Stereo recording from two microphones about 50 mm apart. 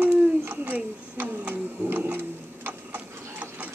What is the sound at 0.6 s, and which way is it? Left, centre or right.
Speech, right.